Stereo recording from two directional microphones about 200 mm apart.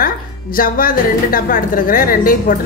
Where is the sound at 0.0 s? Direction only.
45° left (ahead or behind).